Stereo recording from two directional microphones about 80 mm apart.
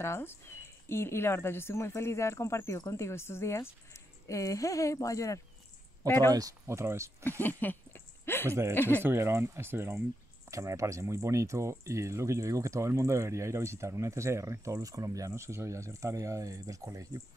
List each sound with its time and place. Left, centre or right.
0.0 s speech: left
6.0 s speech: left
6.3 s speech: right
6.8 s speech: right
7.2 s a sound: left
8.5 s speech: right
8.7 s speech: left
9.0 s speech: right
10.5 s speech: right